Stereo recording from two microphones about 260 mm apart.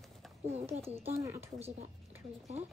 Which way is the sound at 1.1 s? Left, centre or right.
Centre.